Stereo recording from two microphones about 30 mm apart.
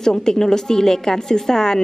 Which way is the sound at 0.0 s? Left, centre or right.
Left.